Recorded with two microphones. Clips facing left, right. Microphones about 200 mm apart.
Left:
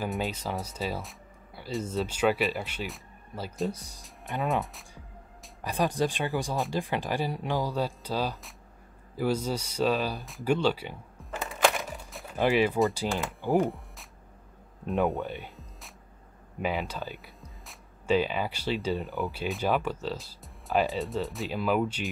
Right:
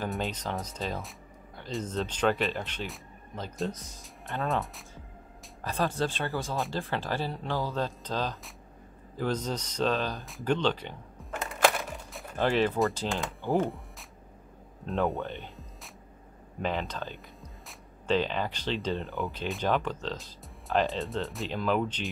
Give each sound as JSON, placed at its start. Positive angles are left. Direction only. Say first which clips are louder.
{"t": 0.0, "sound": "speech", "louder": "left 1 dB", "side_deg": 5}
{"t": 5.6, "sound": "speech", "louder": "left 2 dB", "side_deg": 15}
{"t": 10.2, "sound": "a sound", "louder": "left 2 dB", "side_deg": 5}
{"t": 12.4, "sound": "speech", "louder": "left 2 dB", "side_deg": 10}
{"t": 16.6, "sound": "speech", "louder": "left 1 dB", "side_deg": 10}